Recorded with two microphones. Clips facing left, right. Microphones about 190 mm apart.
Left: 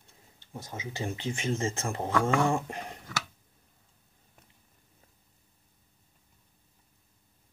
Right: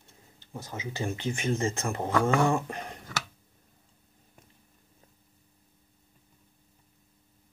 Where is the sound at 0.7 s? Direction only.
25° left (ahead or behind).